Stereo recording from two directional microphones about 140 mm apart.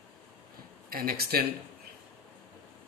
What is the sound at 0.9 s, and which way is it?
Speech, 90° right.